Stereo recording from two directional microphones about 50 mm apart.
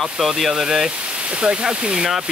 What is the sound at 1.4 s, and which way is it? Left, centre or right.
Speech, centre.